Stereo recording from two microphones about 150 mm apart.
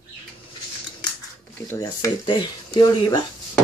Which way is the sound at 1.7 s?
25° left (ahead or behind).